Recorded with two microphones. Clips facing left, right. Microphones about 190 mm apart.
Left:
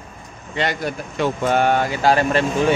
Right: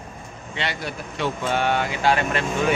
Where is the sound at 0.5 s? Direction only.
45° left (ahead or behind).